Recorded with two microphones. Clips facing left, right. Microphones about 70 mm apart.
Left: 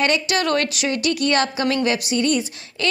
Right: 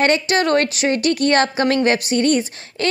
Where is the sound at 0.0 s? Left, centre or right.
Right.